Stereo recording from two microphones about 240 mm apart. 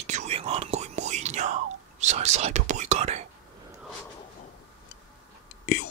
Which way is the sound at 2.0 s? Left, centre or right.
Right.